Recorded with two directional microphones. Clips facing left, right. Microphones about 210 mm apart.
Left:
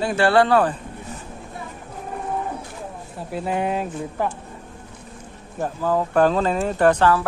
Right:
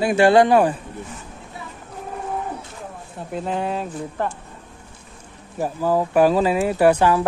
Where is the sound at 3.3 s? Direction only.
10° left (ahead or behind).